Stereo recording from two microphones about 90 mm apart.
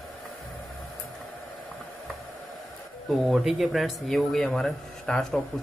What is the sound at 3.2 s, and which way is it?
Speech, 5° right (ahead or behind).